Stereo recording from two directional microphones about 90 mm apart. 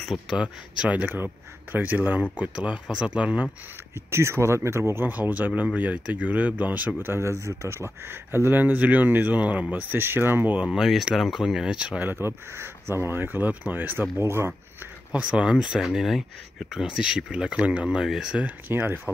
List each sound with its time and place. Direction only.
0.0 s speech: centre (ahead or behind)
0.4 s speech: 15° right (ahead or behind)
3.9 s speech: 30° right (ahead or behind)
7.0 s speech: 30° right (ahead or behind); by 12.1 s 10° right (ahead or behind)
12.1 s speech: 25° right (ahead or behind)
15.1 s speech: 10° right (ahead or behind)
18.7 s speech: 25° right (ahead or behind)